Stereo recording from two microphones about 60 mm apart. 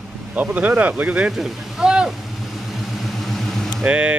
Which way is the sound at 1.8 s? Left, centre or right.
Centre.